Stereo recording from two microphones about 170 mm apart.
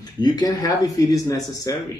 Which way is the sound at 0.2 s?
20° left (ahead or behind).